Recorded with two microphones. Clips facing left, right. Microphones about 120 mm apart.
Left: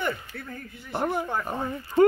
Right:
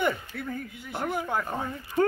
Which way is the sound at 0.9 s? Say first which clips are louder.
Left 4 dB; 25° left (ahead or behind).